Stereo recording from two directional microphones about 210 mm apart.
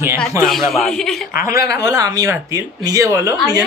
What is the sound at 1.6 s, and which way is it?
Speech, 55° left (ahead or behind).